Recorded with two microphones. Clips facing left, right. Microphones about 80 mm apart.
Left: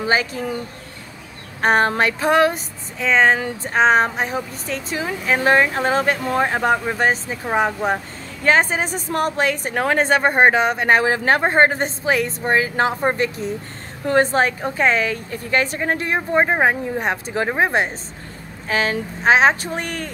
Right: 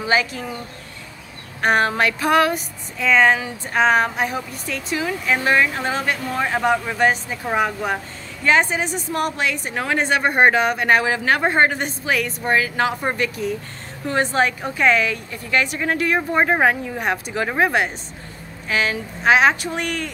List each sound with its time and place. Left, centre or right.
0.0 s speech: left
1.6 s speech: left
8.5 s a woman's voice: left